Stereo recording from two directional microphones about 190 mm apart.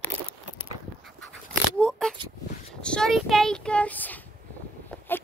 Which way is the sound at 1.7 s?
5° left (ahead or behind).